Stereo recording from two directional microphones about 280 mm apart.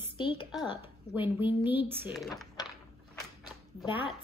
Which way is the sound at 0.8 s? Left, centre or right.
Centre.